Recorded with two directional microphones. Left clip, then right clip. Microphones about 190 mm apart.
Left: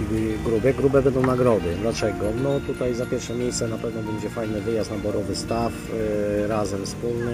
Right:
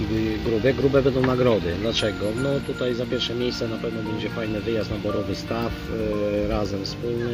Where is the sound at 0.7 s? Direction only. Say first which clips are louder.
Even; 5° left (ahead or behind).